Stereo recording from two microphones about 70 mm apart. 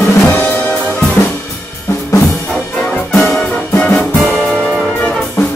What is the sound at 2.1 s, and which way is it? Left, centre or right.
Music, left.